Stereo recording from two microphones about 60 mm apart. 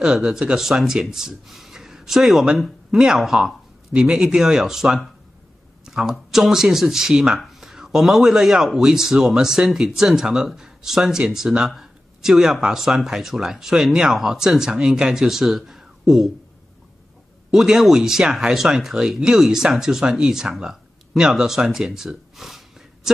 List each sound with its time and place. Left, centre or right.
0.0 s speech: centre
3.9 s speech: centre
17.5 s speech: centre